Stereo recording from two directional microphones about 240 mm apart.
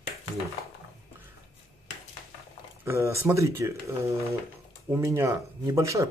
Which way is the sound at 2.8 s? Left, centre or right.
Centre.